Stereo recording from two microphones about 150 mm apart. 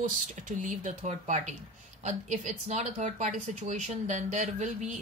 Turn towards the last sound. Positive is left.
turn(degrees=-50)  # may be behind; listen again after turning